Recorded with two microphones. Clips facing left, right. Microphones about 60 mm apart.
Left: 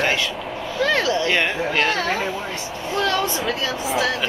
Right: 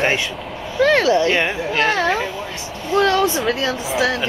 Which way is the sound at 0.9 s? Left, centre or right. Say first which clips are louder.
Right 5 dB; right.